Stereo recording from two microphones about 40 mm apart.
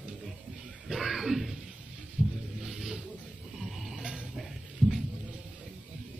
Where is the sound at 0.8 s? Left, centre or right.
Centre.